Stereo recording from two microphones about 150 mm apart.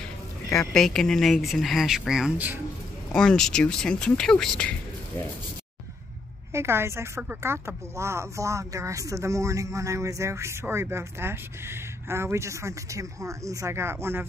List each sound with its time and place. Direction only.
0.7 s speech: 5° left (ahead or behind)
3.1 s speech: 5° left (ahead or behind)
6.5 s speech: 15° right (ahead or behind)